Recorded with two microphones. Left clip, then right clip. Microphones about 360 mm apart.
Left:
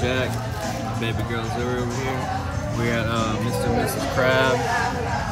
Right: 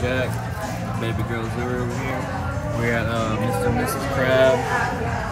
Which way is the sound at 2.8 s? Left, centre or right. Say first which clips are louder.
Even; centre.